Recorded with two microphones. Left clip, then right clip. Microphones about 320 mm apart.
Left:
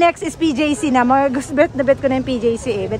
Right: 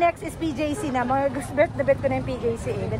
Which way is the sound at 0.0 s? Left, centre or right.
Left.